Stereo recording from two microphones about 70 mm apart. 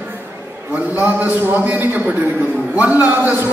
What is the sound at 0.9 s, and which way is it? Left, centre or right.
A man's voice, right.